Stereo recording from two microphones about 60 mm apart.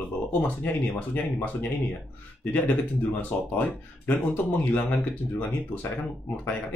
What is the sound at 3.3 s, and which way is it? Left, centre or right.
Speech, centre.